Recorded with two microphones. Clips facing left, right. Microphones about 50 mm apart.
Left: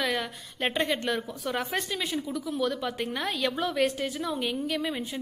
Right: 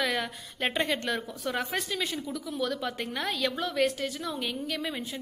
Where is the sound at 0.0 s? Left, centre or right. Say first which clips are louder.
Even; centre.